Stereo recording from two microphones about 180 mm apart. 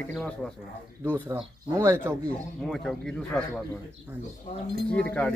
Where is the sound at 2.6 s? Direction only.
Centre (ahead or behind).